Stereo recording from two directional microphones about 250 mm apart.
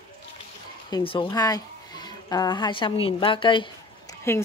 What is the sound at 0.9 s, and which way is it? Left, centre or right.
A woman's voice, centre.